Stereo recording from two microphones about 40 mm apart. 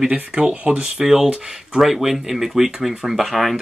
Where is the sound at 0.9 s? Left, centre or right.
Centre.